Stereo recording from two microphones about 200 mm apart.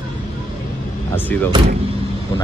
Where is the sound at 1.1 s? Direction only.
10° left (ahead or behind).